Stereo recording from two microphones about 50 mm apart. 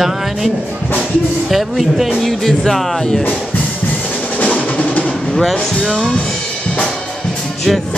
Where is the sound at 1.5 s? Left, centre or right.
Centre.